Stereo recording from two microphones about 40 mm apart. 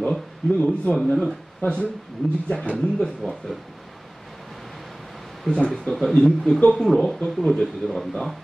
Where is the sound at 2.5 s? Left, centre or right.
Left.